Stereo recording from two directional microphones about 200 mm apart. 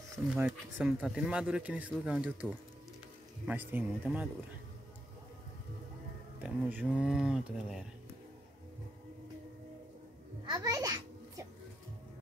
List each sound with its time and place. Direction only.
0.3 s a man's voice: 5° right (ahead or behind)
3.4 s speech: 10° right (ahead or behind)
6.4 s a man's voice: 5° right (ahead or behind)
10.4 s music: 20° right (ahead or behind)